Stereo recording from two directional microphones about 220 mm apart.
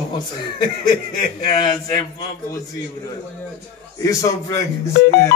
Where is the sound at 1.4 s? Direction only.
20° left (ahead or behind).